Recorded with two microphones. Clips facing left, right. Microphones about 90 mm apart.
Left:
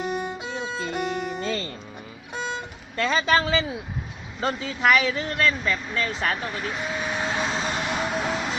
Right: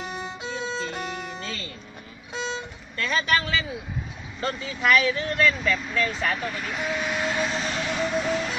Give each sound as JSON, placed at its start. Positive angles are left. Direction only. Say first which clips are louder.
{"t": 0.0, "sound": "violin", "louder": "left 5 dB", "side_deg": 5}
{"t": 0.7, "sound": "music", "louder": "left 5 dB", "side_deg": 5}
{"t": 3.0, "sound": "speech", "louder": "left 3 dB", "side_deg": 25}
{"t": 6.3, "sound": "vehicle", "louder": "even", "side_deg": 20}